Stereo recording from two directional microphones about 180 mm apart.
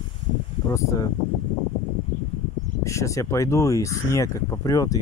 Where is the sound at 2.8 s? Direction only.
15° left (ahead or behind).